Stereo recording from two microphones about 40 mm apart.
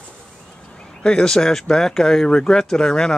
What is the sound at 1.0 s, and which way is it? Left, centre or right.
Speech, centre.